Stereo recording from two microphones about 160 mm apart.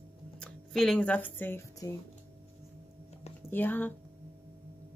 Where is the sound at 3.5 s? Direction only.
10° left (ahead or behind).